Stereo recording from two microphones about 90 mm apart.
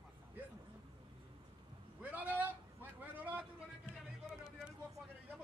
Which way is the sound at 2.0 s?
20° right (ahead or behind).